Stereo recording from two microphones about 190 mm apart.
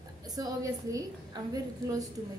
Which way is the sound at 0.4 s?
20° right (ahead or behind).